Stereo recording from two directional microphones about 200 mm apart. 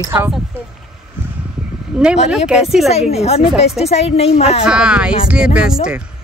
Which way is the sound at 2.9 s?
30° left (ahead or behind).